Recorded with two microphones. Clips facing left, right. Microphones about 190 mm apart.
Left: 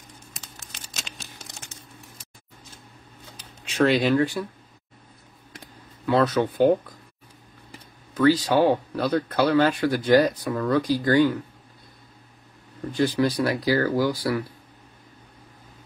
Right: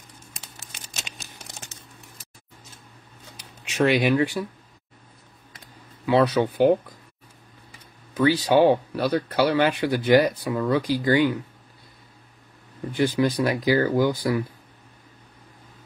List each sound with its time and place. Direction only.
0.7 s a sound: 10° right (ahead or behind)
3.3 s speech: 10° right (ahead or behind)
6.0 s speech: 15° right (ahead or behind)
8.1 s speech: 15° right (ahead or behind)
12.9 s speech: 15° right (ahead or behind)